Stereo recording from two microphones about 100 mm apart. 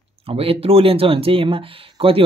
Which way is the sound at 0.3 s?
70° right (ahead or behind).